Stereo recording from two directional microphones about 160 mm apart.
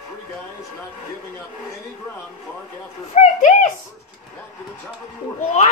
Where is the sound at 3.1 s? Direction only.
45° left (ahead or behind).